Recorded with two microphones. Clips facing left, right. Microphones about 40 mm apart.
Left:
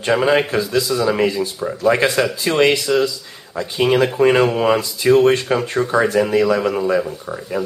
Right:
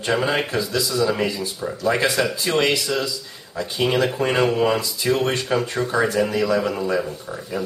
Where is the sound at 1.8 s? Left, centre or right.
Left.